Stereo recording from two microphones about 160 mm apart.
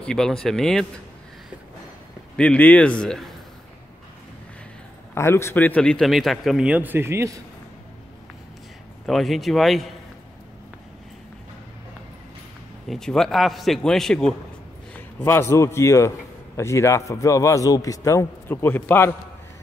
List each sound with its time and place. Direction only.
0.0 s a man's voice: 5° left (ahead or behind)
2.3 s a man's voice: 10° left (ahead or behind)
5.1 s a man's voice: 15° left (ahead or behind); by 7.4 s 20° right (ahead or behind)
9.0 s a man's voice: centre (ahead or behind)
12.8 s a man's voice: centre (ahead or behind)
15.1 s a man's voice: 15° left (ahead or behind)